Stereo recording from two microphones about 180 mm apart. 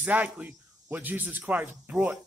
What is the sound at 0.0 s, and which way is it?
Speech, 10° right (ahead or behind).